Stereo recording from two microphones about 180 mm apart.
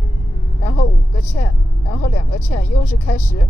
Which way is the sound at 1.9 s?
55° left (ahead or behind).